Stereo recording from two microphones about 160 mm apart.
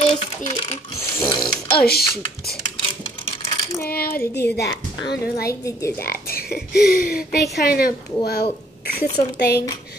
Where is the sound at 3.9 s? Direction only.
70° left (ahead or behind).